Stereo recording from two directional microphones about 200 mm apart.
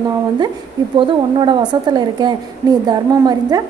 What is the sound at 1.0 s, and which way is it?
A woman's voice, 20° right (ahead or behind).